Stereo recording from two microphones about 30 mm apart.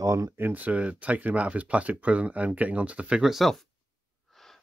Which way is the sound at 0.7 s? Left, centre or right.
Right.